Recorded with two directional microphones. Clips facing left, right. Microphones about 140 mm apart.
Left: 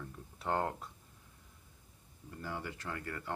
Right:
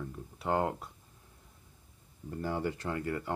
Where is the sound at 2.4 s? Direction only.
30° right (ahead or behind).